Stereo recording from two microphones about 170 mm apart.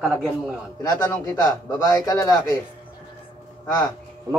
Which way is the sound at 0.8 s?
20° left (ahead or behind).